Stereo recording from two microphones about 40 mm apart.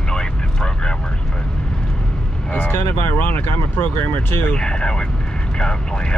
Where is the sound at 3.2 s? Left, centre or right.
Left.